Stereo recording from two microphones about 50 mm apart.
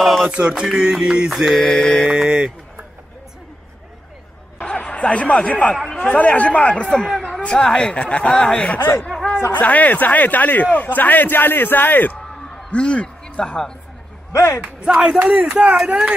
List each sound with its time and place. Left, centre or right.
0.0 s music: centre
0.3 s music: right
0.7 s speech: centre
1.3 s mantra: centre
2.1 s music: right
4.6 s a sound: left
4.9 s speech: left
8.6 s speech: left
12.4 s a sound: centre
14.3 s speech: left
14.6 s speech: centre